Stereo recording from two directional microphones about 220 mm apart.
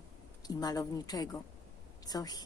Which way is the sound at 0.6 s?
15° left (ahead or behind).